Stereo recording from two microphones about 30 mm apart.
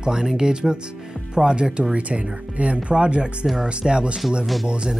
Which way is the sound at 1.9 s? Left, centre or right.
Right.